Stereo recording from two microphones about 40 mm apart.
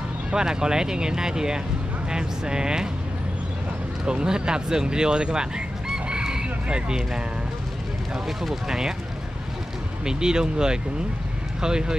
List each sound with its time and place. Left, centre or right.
0.3 s speech: centre
4.0 s speech: right
8.3 s speech: centre
10.0 s speech: centre